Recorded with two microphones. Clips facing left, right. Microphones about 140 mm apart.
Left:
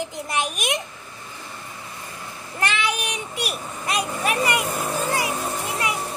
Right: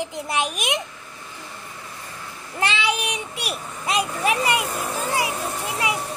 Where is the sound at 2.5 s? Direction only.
25° right (ahead or behind).